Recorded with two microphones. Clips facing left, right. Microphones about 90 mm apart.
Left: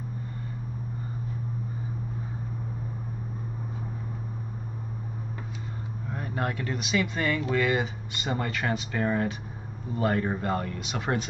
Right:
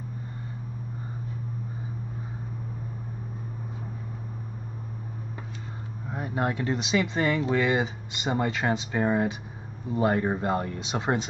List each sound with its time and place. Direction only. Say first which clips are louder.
6.0 s speech: right 3 dB; 15° right (ahead or behind)